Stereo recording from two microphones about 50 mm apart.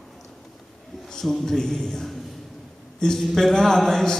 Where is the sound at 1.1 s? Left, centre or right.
Centre.